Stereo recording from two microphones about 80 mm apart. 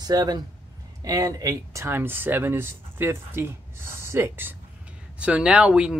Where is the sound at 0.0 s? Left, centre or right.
Right.